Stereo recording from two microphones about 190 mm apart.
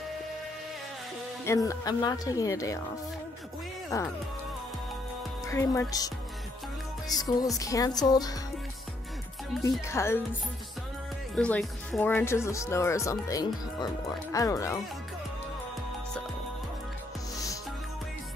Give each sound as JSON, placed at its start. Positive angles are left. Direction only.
{"t": 1.4, "sound": "speech", "side_deg": 15}
{"t": 3.9, "sound": "speech", "side_deg": 15}
{"t": 5.5, "sound": "speech", "side_deg": 15}
{"t": 7.2, "sound": "speech", "side_deg": 20}
{"t": 9.6, "sound": "speech", "side_deg": 15}
{"t": 11.3, "sound": "speech", "side_deg": 5}